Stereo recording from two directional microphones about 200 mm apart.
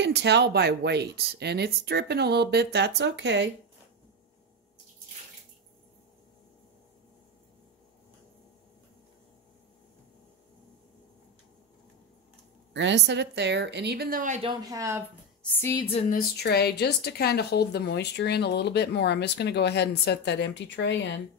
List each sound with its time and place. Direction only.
0.0 s speech: 55° right (ahead or behind)
12.7 s speech: 60° right (ahead or behind); by 14.4 s 40° right (ahead or behind)
14.4 s speech: 20° right (ahead or behind)
15.6 s speech: 20° left (ahead or behind)
16.1 s a woman's voice: 50° left (ahead or behind)